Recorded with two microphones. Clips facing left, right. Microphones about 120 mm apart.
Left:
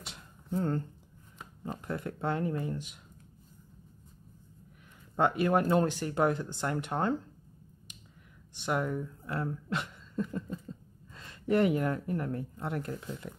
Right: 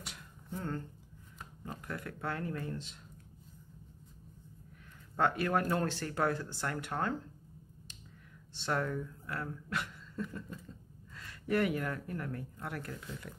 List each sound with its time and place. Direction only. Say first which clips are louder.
0.5 s speech: left 8 dB; 40° left (ahead or behind)
1.6 s speech: left 6 dB; 25° left (ahead or behind)
5.1 s speech: left 4 dB; 20° left (ahead or behind)
8.5 s speech: left 3 dB; 15° left (ahead or behind)